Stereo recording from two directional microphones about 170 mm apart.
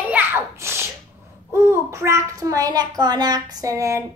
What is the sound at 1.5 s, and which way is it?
Babbling, 15° right (ahead or behind).